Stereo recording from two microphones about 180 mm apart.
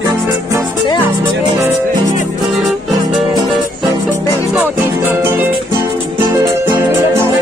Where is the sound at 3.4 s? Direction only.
20° right (ahead or behind).